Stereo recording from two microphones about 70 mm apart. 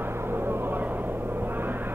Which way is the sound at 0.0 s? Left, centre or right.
Right.